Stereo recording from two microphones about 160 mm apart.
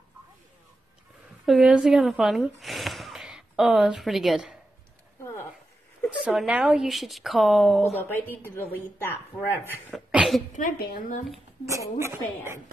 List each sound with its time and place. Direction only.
1.4 s speech: centre (ahead or behind)
6.0 s speech: 5° right (ahead or behind)
8.0 s speech: 15° left (ahead or behind)
9.9 s cough: centre (ahead or behind)
10.5 s speech: 65° left (ahead or behind)
11.6 s a woman's voice: 20° right (ahead or behind)